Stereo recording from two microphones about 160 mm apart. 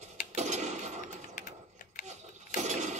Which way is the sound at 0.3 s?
45° right (ahead or behind).